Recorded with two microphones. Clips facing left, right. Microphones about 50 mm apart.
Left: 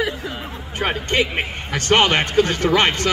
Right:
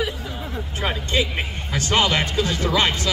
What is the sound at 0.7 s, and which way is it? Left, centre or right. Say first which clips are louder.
A man's voice: left 3 dB; left.